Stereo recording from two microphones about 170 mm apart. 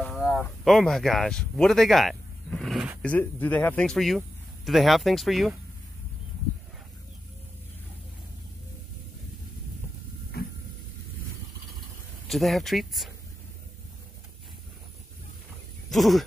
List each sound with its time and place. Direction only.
0.0 s speech: 10° left (ahead or behind)
10.3 s a sound: 65° left (ahead or behind)
12.3 s speech: centre (ahead or behind)
15.9 s goat: centre (ahead or behind)